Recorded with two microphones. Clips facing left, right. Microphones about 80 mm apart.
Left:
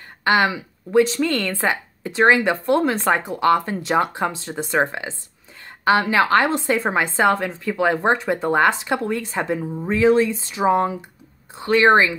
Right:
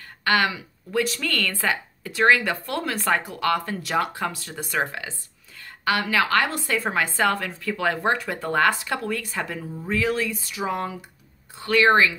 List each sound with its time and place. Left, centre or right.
0.2 s a woman's voice: left